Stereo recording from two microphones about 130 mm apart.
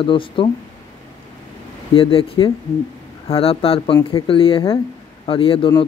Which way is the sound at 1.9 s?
45° left (ahead or behind).